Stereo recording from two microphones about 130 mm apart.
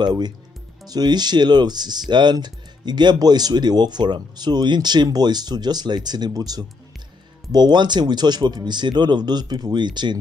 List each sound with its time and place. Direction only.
0.0 s speech: 35° right (ahead or behind)